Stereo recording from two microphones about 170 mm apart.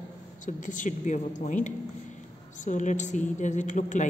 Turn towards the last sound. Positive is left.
turn(degrees=45)  # may be behind; listen again after turning